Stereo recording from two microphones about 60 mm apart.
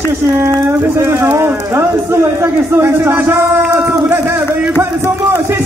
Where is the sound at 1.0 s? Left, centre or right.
Right.